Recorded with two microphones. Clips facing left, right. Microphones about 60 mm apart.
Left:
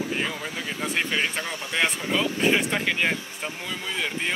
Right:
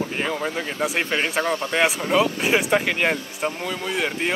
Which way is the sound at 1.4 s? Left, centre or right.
Right.